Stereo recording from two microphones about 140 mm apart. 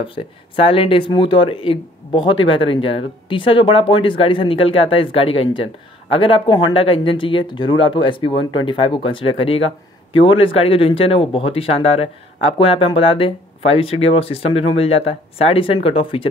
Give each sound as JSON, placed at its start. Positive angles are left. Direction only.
{"t": 0.0, "sound": "speech", "side_deg": 40}